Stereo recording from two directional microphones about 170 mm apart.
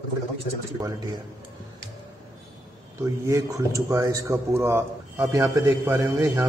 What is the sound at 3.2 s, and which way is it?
Speech, 20° right (ahead or behind).